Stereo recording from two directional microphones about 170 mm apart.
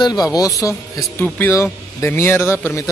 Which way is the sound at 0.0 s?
25° left (ahead or behind).